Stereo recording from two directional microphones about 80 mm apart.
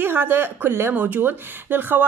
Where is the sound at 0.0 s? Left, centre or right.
Right.